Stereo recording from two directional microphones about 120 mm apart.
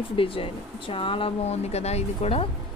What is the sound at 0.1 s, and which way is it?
Speech, 50° left (ahead or behind).